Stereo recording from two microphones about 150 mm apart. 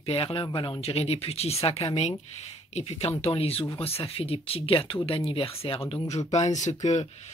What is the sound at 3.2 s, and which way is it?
Speech, 40° left (ahead or behind).